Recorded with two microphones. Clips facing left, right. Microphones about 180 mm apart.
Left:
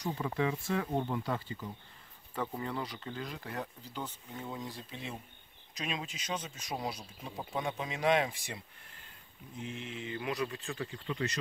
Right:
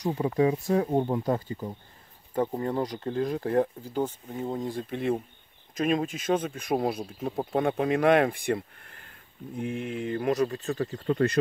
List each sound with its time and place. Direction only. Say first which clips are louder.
0.0 s speech: right 9 dB; 35° right (ahead or behind)